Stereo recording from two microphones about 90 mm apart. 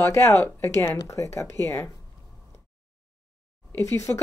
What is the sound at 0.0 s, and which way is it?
Speech, 30° left (ahead or behind).